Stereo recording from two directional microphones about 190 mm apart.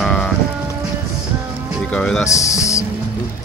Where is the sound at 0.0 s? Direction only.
5° left (ahead or behind).